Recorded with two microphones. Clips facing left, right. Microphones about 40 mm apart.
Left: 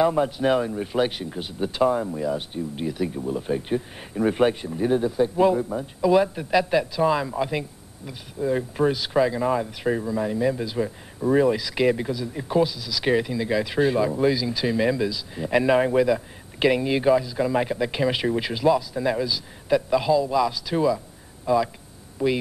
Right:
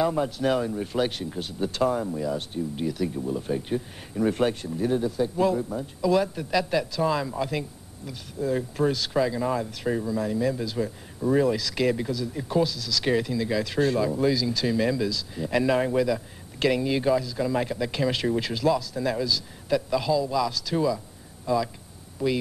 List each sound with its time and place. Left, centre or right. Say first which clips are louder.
0.0 s speech: left 4 dB; centre